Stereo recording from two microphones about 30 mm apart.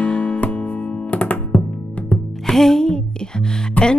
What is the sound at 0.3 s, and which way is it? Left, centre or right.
Music, left.